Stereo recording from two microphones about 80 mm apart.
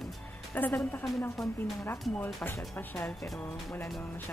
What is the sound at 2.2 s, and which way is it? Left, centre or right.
Speech, left.